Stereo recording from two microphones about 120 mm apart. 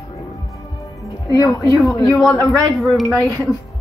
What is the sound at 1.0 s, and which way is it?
A woman's voice, 30° left (ahead or behind).